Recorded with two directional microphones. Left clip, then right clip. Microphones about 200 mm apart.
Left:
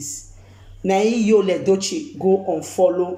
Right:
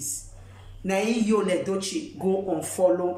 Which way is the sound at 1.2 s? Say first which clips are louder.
Left 8 dB; 15° left (ahead or behind).